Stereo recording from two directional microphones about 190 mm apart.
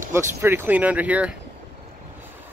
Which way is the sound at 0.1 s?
10° right (ahead or behind).